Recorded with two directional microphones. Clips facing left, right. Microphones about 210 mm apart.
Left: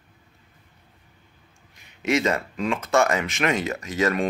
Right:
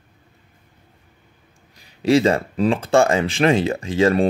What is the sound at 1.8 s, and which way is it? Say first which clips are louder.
Speech: right 7 dB; 35° right (ahead or behind).